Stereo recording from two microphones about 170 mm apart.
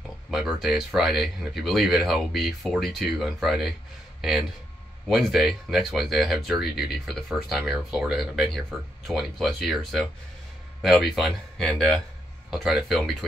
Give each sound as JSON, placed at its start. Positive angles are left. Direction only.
{"t": 0.3, "sound": "speech", "side_deg": -5}